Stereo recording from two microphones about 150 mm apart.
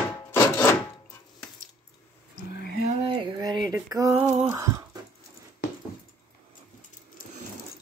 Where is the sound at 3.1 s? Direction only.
30° right (ahead or behind).